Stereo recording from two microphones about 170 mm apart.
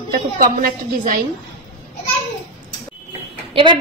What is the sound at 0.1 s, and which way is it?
A woman's voice, 55° right (ahead or behind).